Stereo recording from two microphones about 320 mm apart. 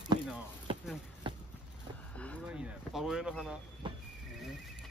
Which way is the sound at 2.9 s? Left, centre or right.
Centre.